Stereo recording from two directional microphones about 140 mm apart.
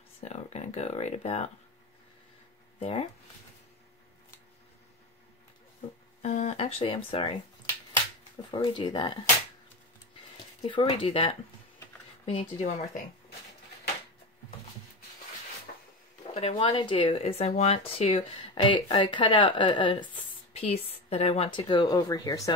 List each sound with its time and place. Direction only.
0.2 s speech: 50° left (ahead or behind)
2.8 s speech: 45° left (ahead or behind)
6.2 s speech: 50° left (ahead or behind)
8.5 s speech: 35° left (ahead or behind)
10.6 s speech: 40° left (ahead or behind)
16.3 s speech: 40° left (ahead or behind)
20.5 s a woman's voice: 45° left (ahead or behind); by 22.5 s 25° left (ahead or behind)